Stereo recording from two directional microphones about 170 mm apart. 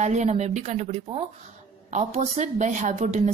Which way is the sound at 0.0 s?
45° right (ahead or behind).